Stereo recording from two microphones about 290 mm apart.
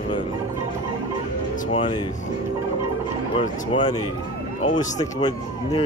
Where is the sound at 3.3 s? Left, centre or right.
Left.